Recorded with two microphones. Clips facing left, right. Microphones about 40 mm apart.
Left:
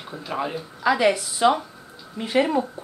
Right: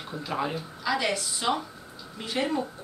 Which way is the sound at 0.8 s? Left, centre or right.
Left.